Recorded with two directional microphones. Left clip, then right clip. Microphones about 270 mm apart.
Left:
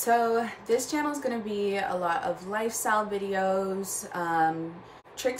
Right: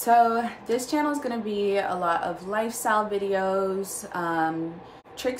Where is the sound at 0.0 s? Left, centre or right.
Centre.